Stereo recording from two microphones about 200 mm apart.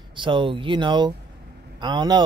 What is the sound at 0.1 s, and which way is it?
Speech, 25° right (ahead or behind).